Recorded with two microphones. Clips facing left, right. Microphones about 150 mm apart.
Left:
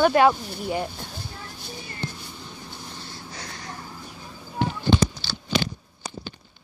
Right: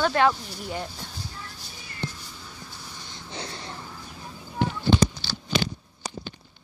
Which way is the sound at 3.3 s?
25° right (ahead or behind).